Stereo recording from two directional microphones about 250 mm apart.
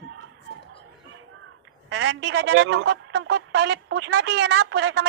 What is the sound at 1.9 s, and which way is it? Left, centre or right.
A woman's voice, right.